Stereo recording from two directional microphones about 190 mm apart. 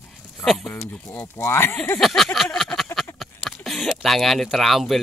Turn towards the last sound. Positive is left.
turn(degrees=0)  # may be behind; listen again after turning